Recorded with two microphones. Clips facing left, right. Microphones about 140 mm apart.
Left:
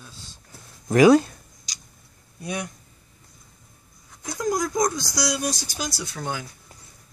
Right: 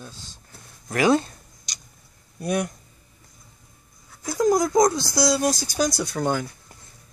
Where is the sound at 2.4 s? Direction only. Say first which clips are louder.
Right 6 dB; 50° right (ahead or behind).